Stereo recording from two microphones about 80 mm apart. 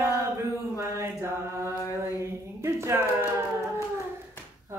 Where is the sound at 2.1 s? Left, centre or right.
Right.